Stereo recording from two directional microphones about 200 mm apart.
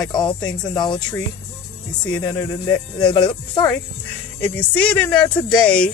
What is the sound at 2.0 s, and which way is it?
Speech, 5° left (ahead or behind).